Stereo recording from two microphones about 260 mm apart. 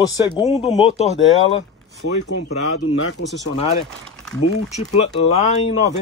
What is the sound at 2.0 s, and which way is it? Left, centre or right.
Speech, left.